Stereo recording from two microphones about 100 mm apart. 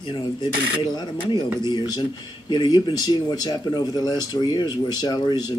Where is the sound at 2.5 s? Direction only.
45° left (ahead or behind).